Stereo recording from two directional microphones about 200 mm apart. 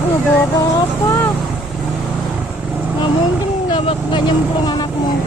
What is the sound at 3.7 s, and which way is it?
Speech, 25° left (ahead or behind).